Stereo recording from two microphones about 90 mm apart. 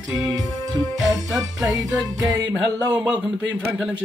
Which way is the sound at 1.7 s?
40° right (ahead or behind).